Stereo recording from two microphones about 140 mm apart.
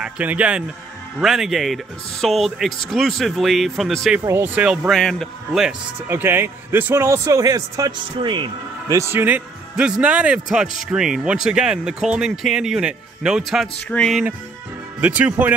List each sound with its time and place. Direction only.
0.0 s speech: 10° right (ahead or behind)
4.2 s speech: 15° right (ahead or behind)
4.9 s speech: 5° left (ahead or behind)
6.0 s a man's voice: 15° right (ahead or behind); by 8.9 s 35° right (ahead or behind)
8.9 s speech: 15° right (ahead or behind); by 13.8 s centre (ahead or behind)
13.8 s music: 10° left (ahead or behind)
15.0 s speech: 10° right (ahead or behind)